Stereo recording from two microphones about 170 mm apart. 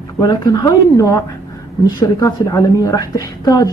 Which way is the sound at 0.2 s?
25° left (ahead or behind).